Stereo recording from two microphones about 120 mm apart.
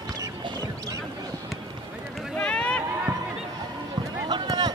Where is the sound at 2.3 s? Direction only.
10° left (ahead or behind).